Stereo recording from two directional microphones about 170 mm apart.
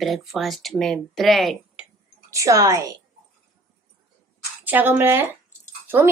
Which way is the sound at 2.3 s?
20° right (ahead or behind).